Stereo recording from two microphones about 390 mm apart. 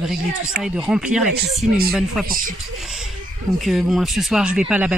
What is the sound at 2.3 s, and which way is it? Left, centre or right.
Speech, right.